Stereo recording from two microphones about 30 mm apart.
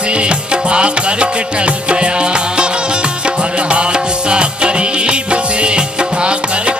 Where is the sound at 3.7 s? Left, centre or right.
Right.